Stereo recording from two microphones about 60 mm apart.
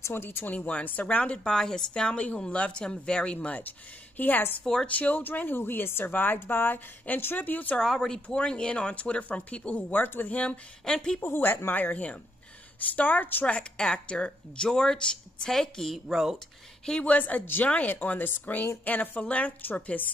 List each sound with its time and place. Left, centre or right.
0.0 s speech: left
0.6 s a woman's voice: left
4.2 s speech: left
4.8 s speech: left
7.7 s speech: centre; by 10.4 s left
10.9 s a woman's voice: centre
11.1 s speech: left
13.5 s a woman's voice: centre
15.9 s speech: centre
16.8 s a woman's voice: centre
17.1 s speech: left